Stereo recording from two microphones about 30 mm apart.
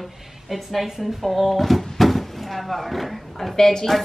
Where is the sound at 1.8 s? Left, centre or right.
Centre.